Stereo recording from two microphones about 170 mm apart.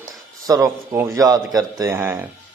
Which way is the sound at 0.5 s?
15° right (ahead or behind).